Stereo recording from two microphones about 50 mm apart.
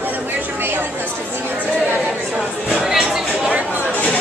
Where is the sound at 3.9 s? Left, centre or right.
Left.